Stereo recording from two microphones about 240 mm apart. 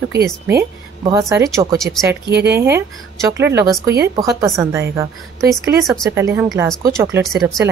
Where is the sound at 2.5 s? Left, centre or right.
Centre.